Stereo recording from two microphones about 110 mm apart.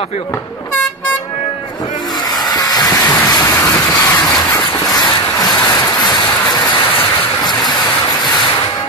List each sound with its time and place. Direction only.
2.5 s rain: 35° left (ahead or behind)
4.1 s vehicle: 35° left (ahead or behind)
4.9 s a sound: 35° left (ahead or behind)
6.0 s waves: 40° left (ahead or behind)